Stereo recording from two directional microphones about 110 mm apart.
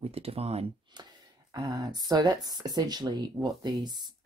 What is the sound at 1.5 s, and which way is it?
Speech, 35° right (ahead or behind).